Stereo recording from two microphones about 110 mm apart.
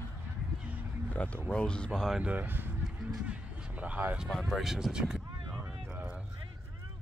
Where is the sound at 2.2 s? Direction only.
15° right (ahead or behind).